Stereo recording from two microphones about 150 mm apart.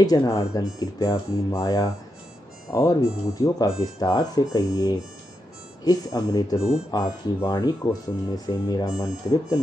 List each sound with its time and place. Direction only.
0.0 s speech: 25° left (ahead or behind)